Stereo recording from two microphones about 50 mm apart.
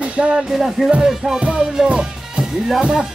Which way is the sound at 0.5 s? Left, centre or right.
Centre.